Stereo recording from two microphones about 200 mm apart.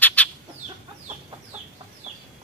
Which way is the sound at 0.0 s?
5° left (ahead or behind).